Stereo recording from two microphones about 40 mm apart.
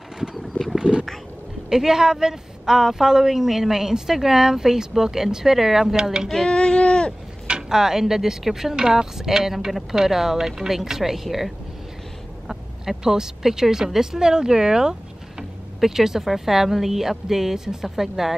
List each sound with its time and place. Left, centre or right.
0.4 s a sound: centre
1.7 s speech: centre
6.3 s speech: left
7.4 s speech: centre